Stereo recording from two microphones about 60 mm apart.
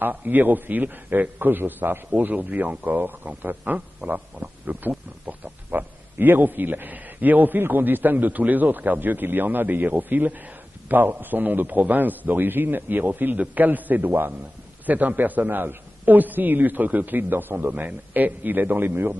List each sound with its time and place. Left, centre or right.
0.1 s a man's voice: right
3.7 s a man's voice: centre; by 19.0 s right